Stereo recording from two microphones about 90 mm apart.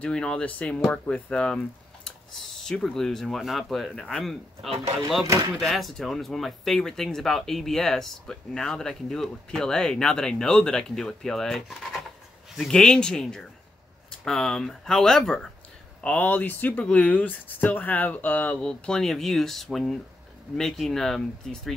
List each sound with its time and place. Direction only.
0.0 s speech: 10° left (ahead or behind)